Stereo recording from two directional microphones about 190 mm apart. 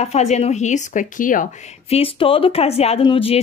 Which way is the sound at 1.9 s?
30° left (ahead or behind).